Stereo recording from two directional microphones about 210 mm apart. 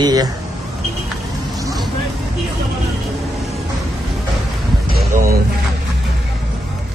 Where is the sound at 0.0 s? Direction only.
20° right (ahead or behind).